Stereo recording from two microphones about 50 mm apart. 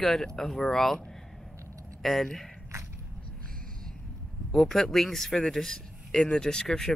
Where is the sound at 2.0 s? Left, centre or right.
Centre.